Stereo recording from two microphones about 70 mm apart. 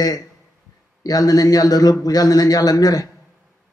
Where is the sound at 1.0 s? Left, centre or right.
Left.